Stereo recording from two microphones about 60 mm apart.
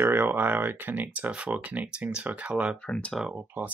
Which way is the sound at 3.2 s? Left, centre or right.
Right.